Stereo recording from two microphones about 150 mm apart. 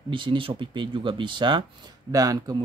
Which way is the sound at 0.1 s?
35° right (ahead or behind).